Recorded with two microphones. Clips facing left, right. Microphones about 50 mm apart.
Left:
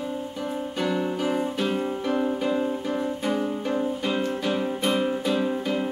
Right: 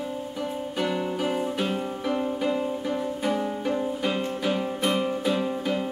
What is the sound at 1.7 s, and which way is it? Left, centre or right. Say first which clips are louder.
Music: left 2 dB; centre.